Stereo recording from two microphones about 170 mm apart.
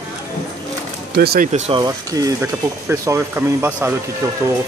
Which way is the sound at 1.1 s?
65° right (ahead or behind).